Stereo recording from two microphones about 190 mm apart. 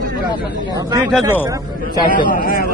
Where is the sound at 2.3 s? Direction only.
50° left (ahead or behind).